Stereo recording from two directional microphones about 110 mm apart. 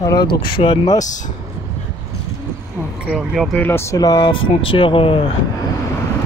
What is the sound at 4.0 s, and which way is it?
Speech, 40° left (ahead or behind).